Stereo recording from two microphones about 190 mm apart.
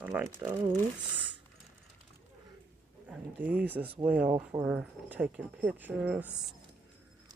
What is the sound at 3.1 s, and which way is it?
Speech, 10° right (ahead or behind).